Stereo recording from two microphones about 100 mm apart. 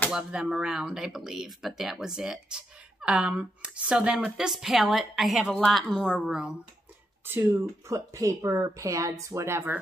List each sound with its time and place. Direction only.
0.1 s speech: 5° right (ahead or behind)
7.2 s speech: 20° right (ahead or behind)
7.9 s speech: 35° right (ahead or behind)